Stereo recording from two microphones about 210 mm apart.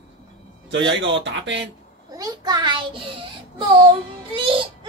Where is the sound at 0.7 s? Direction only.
60° right (ahead or behind).